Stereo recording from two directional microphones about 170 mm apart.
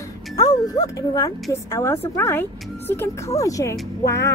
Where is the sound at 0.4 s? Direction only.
20° left (ahead or behind).